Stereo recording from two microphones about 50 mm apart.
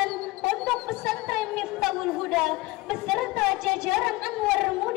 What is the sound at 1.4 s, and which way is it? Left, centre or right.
Music, centre.